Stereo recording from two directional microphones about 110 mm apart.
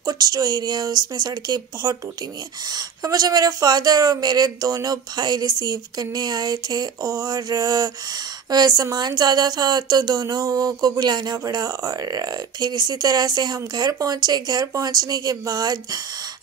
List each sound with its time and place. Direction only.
0.0 s speech: 35° right (ahead or behind)